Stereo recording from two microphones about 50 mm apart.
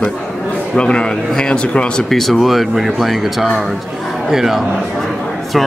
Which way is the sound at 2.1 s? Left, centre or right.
Centre.